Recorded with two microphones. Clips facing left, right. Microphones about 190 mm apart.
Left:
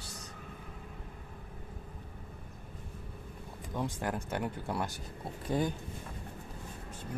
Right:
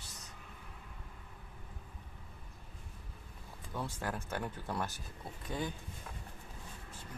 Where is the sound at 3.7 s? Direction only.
15° left (ahead or behind).